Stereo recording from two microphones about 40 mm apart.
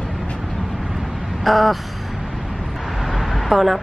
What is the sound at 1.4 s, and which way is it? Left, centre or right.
Speech, centre.